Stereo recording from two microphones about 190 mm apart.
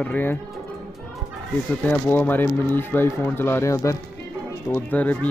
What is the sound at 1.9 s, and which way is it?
A child's voice, 10° left (ahead or behind).